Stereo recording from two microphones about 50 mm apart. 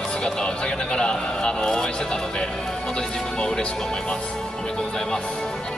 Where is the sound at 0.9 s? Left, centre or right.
Centre.